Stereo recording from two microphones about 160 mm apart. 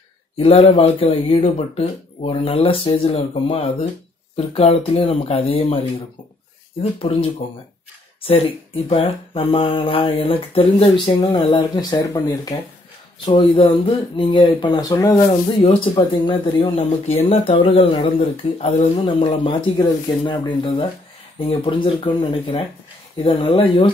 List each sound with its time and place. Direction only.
0.4 s speech: 35° left (ahead or behind)
6.8 s speech: 35° left (ahead or behind)